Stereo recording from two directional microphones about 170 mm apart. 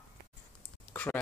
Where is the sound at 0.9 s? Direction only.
10° left (ahead or behind).